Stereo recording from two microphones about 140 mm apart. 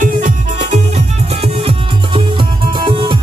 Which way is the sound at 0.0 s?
65° right (ahead or behind).